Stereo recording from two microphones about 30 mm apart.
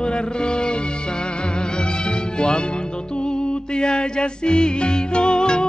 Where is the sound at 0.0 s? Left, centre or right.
Left.